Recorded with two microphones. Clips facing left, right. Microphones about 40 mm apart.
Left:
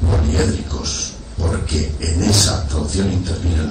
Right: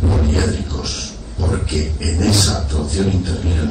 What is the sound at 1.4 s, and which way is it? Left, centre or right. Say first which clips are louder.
Speech: right 1 dB; centre.